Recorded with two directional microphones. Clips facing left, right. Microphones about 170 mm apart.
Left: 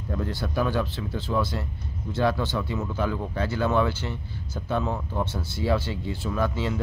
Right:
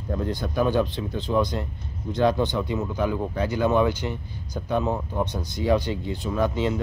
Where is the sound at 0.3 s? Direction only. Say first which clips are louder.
Right 4 dB; 20° right (ahead or behind).